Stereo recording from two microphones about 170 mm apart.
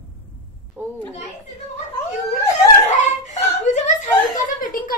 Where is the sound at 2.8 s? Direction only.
40° left (ahead or behind).